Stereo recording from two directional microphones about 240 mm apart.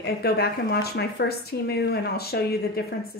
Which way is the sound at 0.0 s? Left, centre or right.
Left.